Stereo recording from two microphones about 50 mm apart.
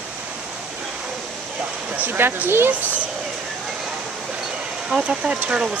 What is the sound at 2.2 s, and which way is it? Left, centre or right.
Speech, right.